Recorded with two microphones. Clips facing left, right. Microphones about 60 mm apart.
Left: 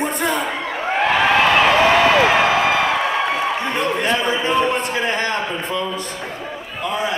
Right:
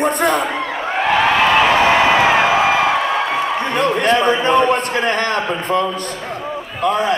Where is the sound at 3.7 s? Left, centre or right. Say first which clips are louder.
Right 8 dB; right.